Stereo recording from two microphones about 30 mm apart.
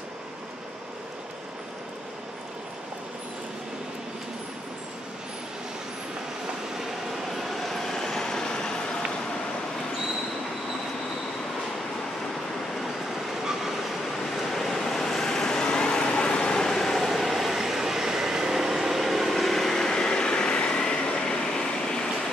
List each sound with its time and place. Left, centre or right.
6.8 s vehicle: centre; by 8.8 s left
13.4 s vehicle: centre
14.3 s vehicle: centre; by 16.6 s left
16.6 s vehicle: centre
17.1 s vehicle: centre
19.9 s train: left
21.4 s vehicle: centre